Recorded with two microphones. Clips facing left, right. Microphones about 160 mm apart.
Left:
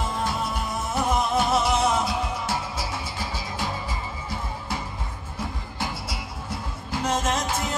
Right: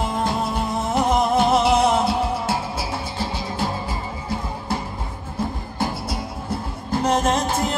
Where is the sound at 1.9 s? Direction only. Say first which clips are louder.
Right 5 dB; 30° right (ahead or behind).